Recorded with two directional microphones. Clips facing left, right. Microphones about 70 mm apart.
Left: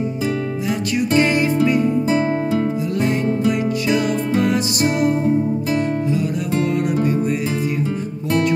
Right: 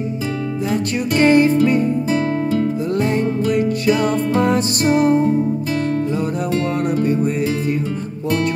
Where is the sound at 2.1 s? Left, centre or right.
Centre.